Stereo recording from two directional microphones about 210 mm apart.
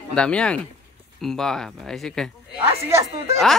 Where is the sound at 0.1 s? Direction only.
5° left (ahead or behind).